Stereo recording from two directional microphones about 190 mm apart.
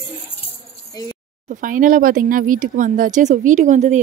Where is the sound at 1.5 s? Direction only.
45° right (ahead or behind).